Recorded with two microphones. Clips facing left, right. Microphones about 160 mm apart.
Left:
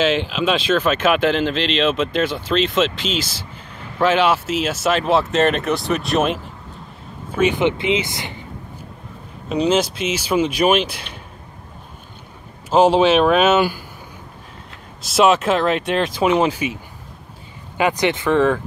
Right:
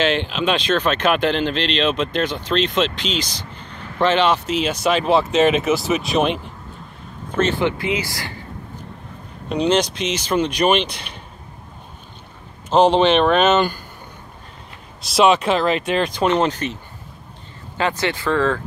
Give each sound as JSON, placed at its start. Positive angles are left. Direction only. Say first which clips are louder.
{"t": 0.0, "sound": "speech", "louder": "left 1 dB", "side_deg": 5}
{"t": 7.3, "sound": "speech", "louder": "left 2 dB", "side_deg": 15}
{"t": 9.5, "sound": "speech", "louder": "left 1 dB", "side_deg": 5}
{"t": 12.6, "sound": "speech", "louder": "left 1 dB", "side_deg": 5}
{"t": 15.0, "sound": "speech", "louder": "even", "side_deg": 0}
{"t": 17.7, "sound": "speech", "louder": "left 3 dB", "side_deg": 15}